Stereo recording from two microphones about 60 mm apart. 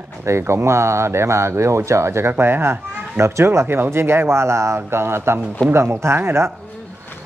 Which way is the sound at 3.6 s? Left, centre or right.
Right.